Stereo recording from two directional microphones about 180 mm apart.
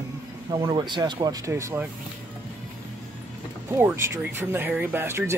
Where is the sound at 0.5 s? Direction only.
25° right (ahead or behind).